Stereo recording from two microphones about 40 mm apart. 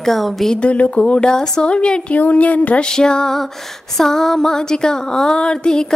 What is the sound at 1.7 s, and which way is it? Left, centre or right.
Speech, left.